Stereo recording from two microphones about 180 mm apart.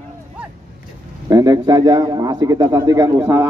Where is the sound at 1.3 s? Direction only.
20° right (ahead or behind).